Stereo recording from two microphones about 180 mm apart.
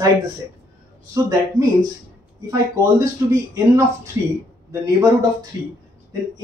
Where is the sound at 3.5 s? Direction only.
20° right (ahead or behind).